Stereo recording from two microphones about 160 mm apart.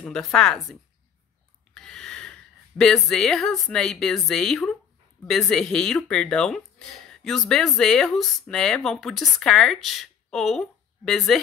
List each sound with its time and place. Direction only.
0.0 s speech: 5° left (ahead or behind)
1.7 s a sound: 5° left (ahead or behind)
2.8 s speech: 5° left (ahead or behind)